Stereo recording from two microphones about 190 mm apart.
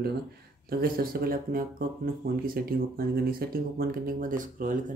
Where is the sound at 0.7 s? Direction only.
50° right (ahead or behind).